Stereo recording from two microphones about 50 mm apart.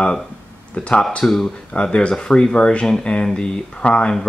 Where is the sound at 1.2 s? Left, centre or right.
Centre.